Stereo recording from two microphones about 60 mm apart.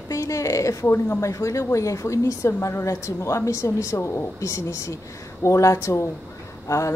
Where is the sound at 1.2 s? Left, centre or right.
Left.